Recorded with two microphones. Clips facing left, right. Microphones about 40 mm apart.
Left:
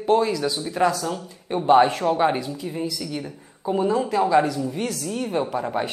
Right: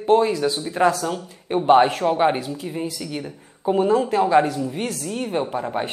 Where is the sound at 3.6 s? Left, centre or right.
Right; by 5.9 s centre.